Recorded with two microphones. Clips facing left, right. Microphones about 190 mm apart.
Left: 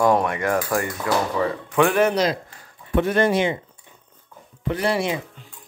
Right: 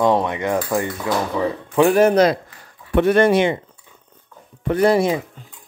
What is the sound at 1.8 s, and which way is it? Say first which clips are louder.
Speech: right 5 dB; 40° right (ahead or behind).